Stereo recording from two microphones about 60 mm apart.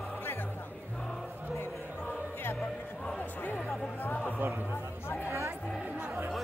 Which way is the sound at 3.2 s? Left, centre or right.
Left.